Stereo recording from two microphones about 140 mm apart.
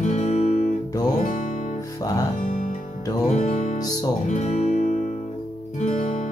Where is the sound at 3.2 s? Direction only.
55° left (ahead or behind).